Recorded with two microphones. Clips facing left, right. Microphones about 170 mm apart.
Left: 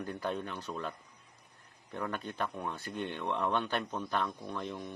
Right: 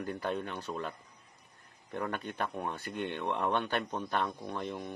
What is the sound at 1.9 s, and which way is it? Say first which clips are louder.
Speech: right 1 dB; 50° right (ahead or behind).